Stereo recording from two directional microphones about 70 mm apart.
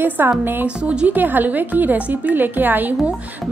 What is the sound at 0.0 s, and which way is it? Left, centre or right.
Speech, right.